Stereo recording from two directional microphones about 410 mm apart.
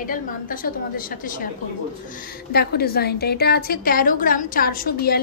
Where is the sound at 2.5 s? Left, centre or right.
Left.